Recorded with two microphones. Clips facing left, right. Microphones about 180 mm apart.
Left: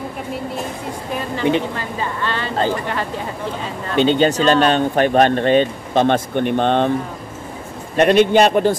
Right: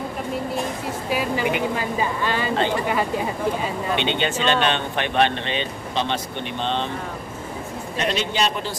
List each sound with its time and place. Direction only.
1.1 s a woman's voice: 10° right (ahead or behind)
3.9 s speech: 40° left (ahead or behind)
8.0 s a man's voice: 55° left (ahead or behind)